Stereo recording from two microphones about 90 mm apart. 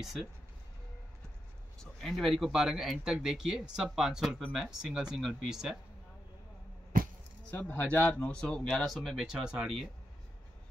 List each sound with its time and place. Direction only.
0.0 s speech: centre (ahead or behind)
1.8 s speech: 5° left (ahead or behind)
7.5 s speech: 20° left (ahead or behind); by 9.8 s 10° right (ahead or behind)